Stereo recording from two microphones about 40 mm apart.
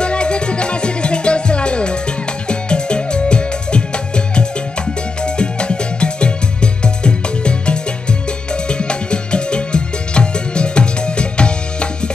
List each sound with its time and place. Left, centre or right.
0.0 s music: left